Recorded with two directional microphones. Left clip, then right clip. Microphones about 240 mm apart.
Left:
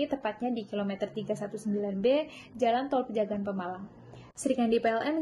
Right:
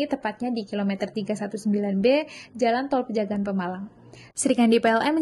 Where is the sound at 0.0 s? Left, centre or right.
Right.